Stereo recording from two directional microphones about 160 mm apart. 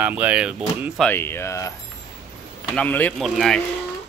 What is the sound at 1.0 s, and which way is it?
Speech, 15° left (ahead or behind).